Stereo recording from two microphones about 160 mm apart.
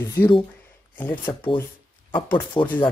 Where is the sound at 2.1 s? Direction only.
30° left (ahead or behind).